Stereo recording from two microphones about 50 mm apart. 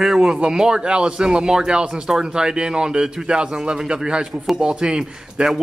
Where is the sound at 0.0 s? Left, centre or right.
Centre.